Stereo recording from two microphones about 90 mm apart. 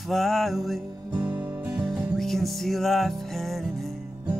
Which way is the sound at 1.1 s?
15° right (ahead or behind).